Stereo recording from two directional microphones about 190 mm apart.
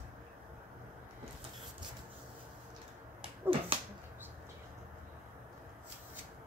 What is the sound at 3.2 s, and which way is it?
Dog, 30° right (ahead or behind).